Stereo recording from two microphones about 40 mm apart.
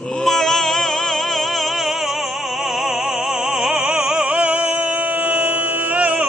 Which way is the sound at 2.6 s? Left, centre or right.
Centre.